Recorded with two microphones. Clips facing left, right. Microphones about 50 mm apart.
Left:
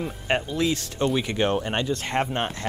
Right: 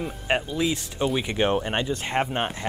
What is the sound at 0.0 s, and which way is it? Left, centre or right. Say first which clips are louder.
Speech: even; centre.